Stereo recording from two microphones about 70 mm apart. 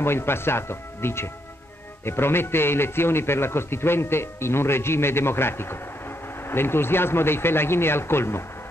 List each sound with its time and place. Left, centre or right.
0.0 s a man's voice: left